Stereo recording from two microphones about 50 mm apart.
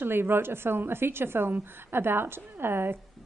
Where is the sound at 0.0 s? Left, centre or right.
Right.